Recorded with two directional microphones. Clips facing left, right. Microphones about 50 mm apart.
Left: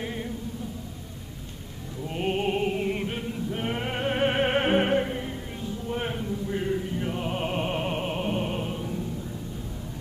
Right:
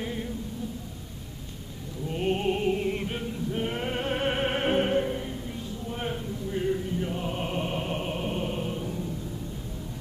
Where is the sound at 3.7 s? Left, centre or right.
Centre.